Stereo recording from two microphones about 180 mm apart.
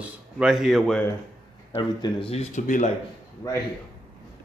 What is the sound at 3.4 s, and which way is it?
Speech, 20° left (ahead or behind).